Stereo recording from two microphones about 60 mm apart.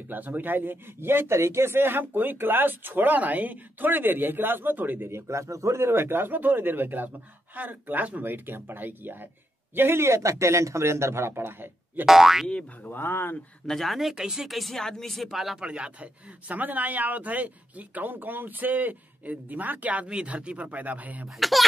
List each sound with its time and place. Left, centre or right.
0.1 s a man's voice: right
5.1 s a man's voice: right
12.1 s boing: centre
12.8 s speech: left
13.7 s speech: centre
15.6 s speech: centre
21.4 s speech: centre